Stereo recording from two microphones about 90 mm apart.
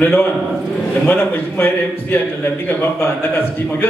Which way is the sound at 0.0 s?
20° left (ahead or behind).